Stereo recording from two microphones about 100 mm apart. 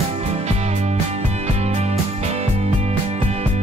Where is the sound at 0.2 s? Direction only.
90° right.